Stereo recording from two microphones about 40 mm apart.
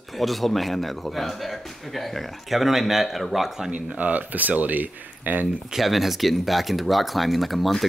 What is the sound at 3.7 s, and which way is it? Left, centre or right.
Speech, right.